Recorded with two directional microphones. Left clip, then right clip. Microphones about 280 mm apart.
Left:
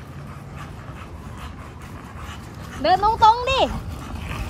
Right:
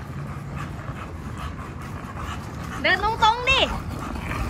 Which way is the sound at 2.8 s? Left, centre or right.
Centre.